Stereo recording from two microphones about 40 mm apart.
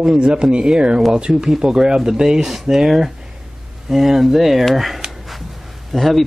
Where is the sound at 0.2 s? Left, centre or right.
Right.